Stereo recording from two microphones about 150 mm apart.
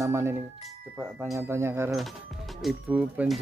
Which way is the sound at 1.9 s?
Centre (ahead or behind).